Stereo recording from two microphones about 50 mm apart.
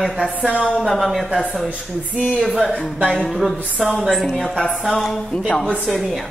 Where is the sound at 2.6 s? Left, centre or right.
Centre.